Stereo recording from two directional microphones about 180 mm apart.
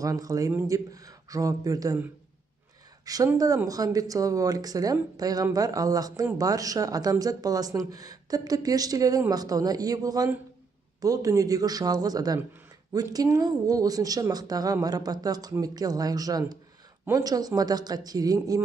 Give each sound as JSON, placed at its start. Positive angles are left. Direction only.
{"t": 0.0, "sound": "speech", "side_deg": -20}
{"t": 3.1, "sound": "speech", "side_deg": -20}